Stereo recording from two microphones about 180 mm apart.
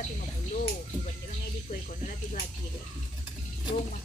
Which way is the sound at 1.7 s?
45° left (ahead or behind).